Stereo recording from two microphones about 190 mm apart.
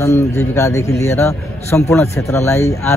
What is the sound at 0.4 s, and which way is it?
A man's voice, 15° left (ahead or behind).